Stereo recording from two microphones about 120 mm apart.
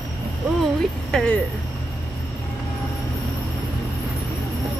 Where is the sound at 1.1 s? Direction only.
5° left (ahead or behind).